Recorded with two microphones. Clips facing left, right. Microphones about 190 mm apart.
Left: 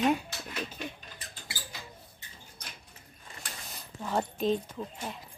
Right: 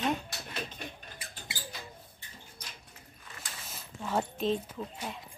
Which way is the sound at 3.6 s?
Centre (ahead or behind).